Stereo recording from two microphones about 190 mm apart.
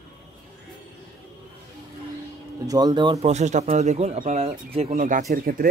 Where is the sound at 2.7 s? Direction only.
20° right (ahead or behind).